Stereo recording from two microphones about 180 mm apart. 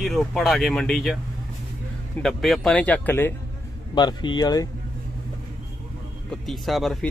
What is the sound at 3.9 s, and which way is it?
Speech, 25° left (ahead or behind).